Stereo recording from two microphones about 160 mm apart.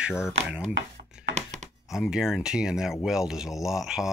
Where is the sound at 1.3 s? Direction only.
50° right (ahead or behind).